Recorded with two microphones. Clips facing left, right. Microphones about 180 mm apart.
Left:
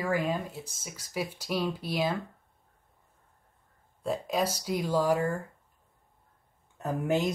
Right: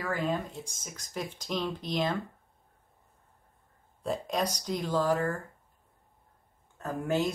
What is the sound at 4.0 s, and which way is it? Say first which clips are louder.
Speech: left 2 dB; centre (ahead or behind).